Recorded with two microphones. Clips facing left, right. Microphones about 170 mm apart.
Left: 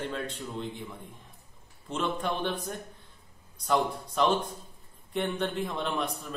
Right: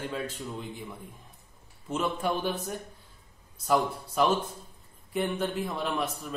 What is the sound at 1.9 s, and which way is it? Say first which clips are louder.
A man's voice: right 2 dB; 5° right (ahead or behind).